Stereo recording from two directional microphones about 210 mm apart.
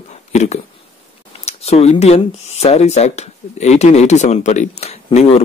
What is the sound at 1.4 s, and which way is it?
Speech, 30° left (ahead or behind).